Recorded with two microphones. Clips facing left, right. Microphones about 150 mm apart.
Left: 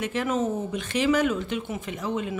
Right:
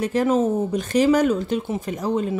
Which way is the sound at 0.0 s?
35° right (ahead or behind).